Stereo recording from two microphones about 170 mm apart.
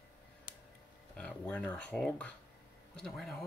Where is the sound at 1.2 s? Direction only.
10° left (ahead or behind).